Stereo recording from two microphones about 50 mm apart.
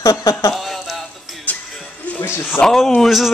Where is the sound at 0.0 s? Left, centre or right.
Left.